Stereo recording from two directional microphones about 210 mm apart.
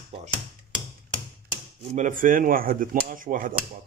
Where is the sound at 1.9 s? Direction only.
40° right (ahead or behind).